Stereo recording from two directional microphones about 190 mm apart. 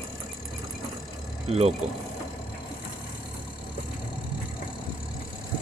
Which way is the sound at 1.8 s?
5° right (ahead or behind).